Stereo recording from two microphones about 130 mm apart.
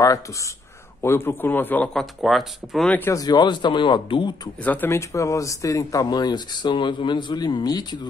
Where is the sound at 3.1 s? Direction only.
30° left (ahead or behind).